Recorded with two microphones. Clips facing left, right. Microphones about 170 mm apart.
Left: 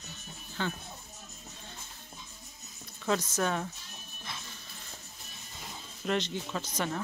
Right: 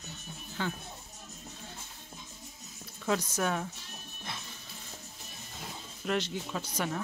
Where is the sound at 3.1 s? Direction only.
10° right (ahead or behind).